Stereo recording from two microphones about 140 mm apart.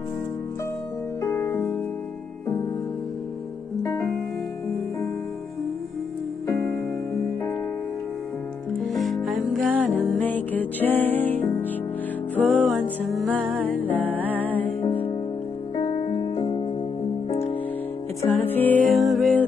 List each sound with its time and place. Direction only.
1.2 s music: 20° left (ahead or behind)
8.7 s music: centre (ahead or behind)
9.8 s music: 10° left (ahead or behind)
13.4 s music: 5° right (ahead or behind)
13.7 s music: 10° left (ahead or behind)
15.7 s music: 30° left (ahead or behind)
18.3 s music: 15° left (ahead or behind)
18.9 s music: centre (ahead or behind)